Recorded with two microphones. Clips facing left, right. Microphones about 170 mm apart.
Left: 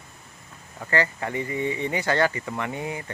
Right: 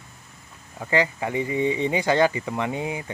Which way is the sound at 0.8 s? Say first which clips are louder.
Right 2 dB; 15° right (ahead or behind).